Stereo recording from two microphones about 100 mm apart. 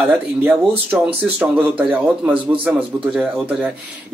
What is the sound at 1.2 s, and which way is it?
Speech, 15° right (ahead or behind).